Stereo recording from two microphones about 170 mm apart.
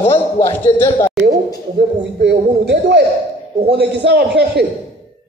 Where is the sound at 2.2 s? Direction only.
80° right.